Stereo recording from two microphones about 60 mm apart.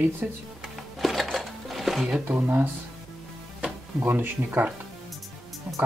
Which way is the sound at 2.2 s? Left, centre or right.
Right.